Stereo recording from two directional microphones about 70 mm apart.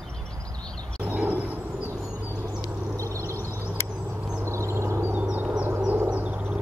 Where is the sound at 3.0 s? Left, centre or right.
Right.